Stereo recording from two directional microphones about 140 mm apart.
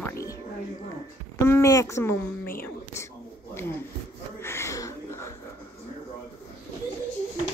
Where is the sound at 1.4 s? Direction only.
20° left (ahead or behind).